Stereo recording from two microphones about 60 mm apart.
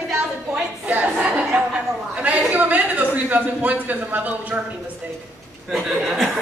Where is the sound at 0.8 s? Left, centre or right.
Right.